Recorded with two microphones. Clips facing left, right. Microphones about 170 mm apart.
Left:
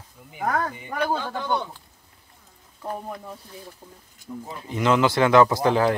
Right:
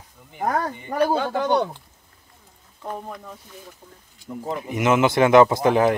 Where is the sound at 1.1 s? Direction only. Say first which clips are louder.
Right 6 dB; 75° right (ahead or behind).